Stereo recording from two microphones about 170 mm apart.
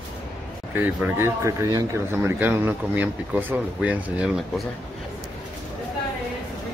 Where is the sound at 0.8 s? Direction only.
15° right (ahead or behind).